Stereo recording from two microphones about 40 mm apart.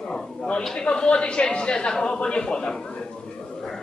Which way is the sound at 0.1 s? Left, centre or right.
Left.